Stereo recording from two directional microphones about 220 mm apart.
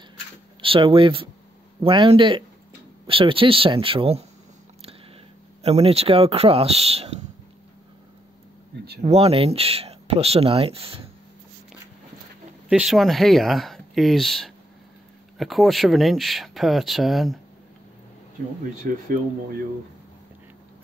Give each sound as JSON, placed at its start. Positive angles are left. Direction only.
{"t": 0.6, "sound": "speech", "side_deg": -25}
{"t": 5.6, "sound": "speech", "side_deg": -25}
{"t": 9.0, "sound": "speech", "side_deg": -25}
{"t": 12.6, "sound": "speech", "side_deg": -5}
{"t": 18.8, "sound": "speech", "side_deg": -40}